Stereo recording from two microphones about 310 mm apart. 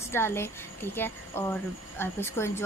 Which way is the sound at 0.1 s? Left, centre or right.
Centre.